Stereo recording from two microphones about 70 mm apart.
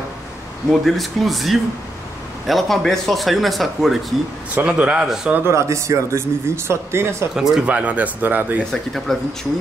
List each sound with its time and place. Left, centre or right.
0.7 s speech: centre
4.6 s a man's voice: centre
5.4 s speech: right
7.3 s a man's voice: centre
7.6 s speech: right
8.7 s speech: centre